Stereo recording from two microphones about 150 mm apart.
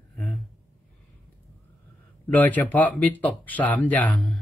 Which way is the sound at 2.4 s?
10° left (ahead or behind).